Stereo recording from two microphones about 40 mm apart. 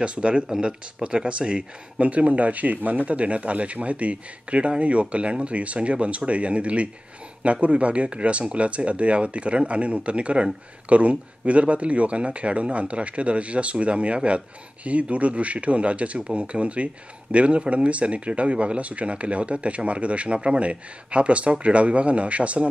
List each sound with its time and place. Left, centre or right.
0.0 s speech: right